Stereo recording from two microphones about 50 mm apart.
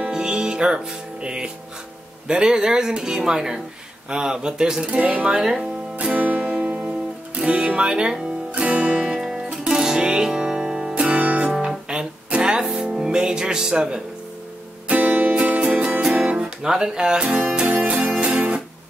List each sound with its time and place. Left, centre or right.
0.0 s music: centre
2.2 s a man's voice: centre
6.0 s music: right
6.9 s guitar: right
8.5 s music: right
9.0 s music: centre; by 11.5 s right
11.5 s music: centre
14.9 s music: right
16.7 s a man's voice: centre
17.3 s music: centre